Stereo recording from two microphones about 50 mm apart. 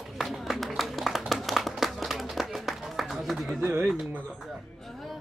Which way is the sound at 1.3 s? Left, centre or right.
Centre.